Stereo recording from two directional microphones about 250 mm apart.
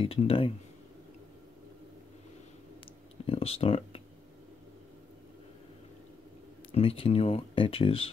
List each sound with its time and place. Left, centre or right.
0.0 s speech: left
3.3 s speech: left
6.7 s speech: left